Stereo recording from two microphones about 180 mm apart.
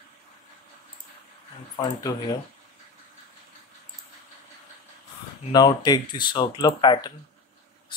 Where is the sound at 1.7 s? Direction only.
25° left (ahead or behind).